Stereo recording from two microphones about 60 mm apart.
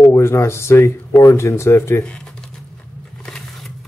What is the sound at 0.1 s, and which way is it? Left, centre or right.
Speech, left.